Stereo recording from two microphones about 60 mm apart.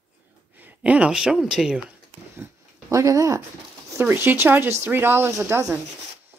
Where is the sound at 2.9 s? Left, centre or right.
Right.